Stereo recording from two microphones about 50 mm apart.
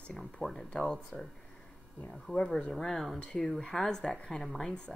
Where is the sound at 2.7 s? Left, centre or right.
Centre.